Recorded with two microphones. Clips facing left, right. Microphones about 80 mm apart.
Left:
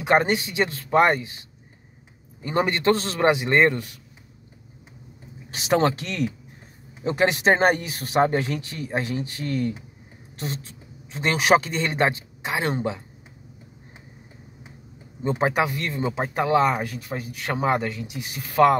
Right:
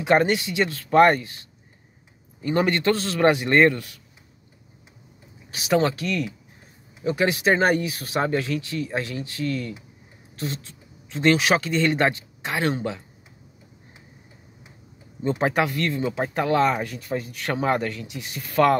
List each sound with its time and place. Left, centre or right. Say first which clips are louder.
0.0 s speech: right 1 dB; left
2.4 s speech: even; left
5.5 s speech: left 1 dB; left
7.0 s speech: left 1 dB; left; by 11.3 s centre
11.3 s speech: left 2 dB; left
15.2 s speech: even; centre